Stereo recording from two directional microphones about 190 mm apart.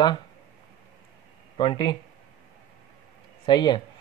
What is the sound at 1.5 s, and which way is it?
Speech, 25° left (ahead or behind).